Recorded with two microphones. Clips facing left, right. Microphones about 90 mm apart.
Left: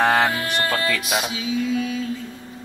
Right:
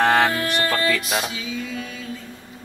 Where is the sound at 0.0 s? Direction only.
10° left (ahead or behind).